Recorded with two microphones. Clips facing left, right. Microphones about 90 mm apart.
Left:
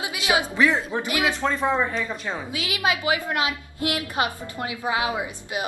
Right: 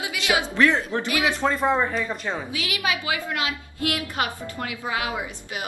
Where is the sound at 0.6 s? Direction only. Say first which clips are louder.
Right 1 dB; 10° left (ahead or behind).